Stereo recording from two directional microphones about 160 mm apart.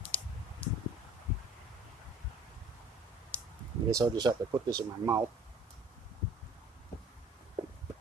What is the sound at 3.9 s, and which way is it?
Speech, 25° right (ahead or behind).